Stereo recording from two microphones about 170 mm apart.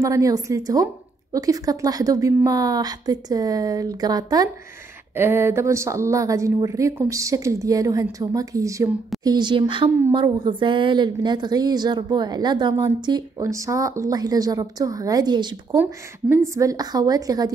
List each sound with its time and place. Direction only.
0.0 s a woman's voice: 20° right (ahead or behind)
9.8 s a woman's voice: 15° right (ahead or behind)
10.1 s a woman's voice: 25° right (ahead or behind)
15.8 s a woman's voice: 15° right (ahead or behind)